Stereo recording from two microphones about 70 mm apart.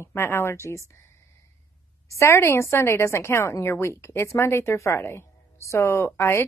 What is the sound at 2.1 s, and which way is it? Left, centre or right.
A woman's voice, left.